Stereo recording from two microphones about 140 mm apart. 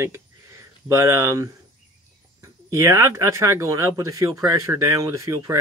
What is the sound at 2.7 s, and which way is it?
Speech, 20° right (ahead or behind).